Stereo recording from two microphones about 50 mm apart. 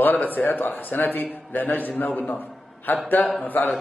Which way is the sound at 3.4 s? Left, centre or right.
Left.